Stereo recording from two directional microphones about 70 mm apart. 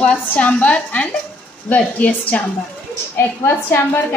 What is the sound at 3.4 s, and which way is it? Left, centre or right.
Speech, left.